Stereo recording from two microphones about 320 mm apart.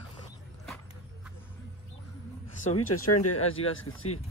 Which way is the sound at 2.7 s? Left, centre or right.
Left.